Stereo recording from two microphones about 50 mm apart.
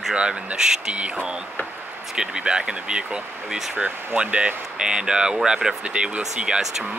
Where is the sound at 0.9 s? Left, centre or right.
Right.